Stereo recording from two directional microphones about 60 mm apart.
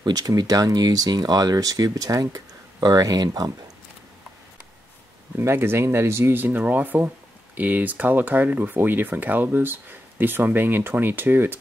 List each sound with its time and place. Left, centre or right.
0.1 s speech: right
2.9 s speech: right
5.4 s speech: right
6.3 s speech: right